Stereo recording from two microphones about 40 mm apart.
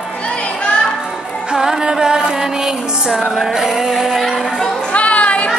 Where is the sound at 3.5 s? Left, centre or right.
Centre.